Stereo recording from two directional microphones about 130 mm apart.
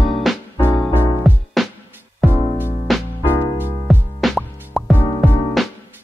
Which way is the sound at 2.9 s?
Centre (ahead or behind).